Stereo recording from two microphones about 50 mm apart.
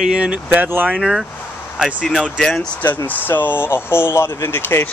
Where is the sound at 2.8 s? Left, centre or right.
Left.